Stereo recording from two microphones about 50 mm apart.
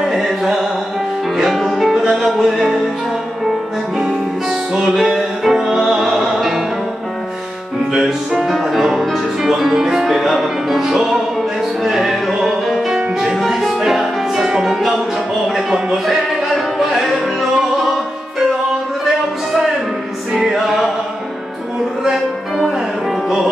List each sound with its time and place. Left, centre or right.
0.0 s music: centre
4.9 s music: centre
8.3 s music: centre